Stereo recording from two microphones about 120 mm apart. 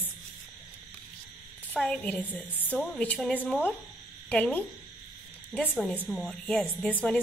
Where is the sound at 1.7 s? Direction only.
10° left (ahead or behind).